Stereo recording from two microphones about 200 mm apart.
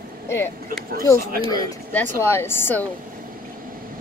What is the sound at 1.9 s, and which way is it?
Speech, 10° left (ahead or behind).